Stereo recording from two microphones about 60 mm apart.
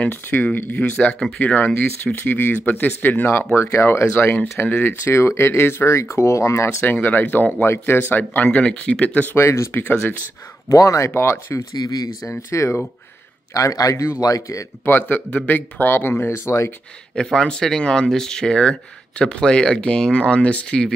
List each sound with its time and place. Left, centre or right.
0.0 s speech: left
4.6 s speech: left
4.8 s speech: left
6.8 s speech: left
8.5 s speech: centre
9.4 s speech: left
9.7 s speech: left
10.7 s a man's voice: left
11.1 s speech: left
11.8 s speech: left
12.3 s speech: left
13.5 s a man's voice: left
14.9 s speech: left
17.1 s speech: centre